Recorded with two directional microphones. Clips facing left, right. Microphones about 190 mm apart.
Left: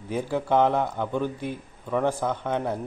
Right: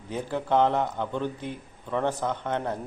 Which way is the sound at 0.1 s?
10° left (ahead or behind).